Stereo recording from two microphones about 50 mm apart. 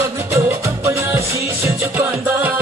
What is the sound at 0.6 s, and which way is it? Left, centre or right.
Music, right.